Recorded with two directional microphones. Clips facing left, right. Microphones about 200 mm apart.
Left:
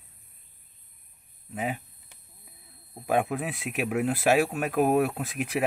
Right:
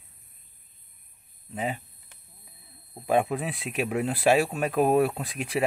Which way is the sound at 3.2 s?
Centre (ahead or behind).